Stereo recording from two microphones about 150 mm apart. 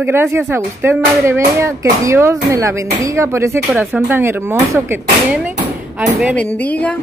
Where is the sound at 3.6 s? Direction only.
Centre (ahead or behind).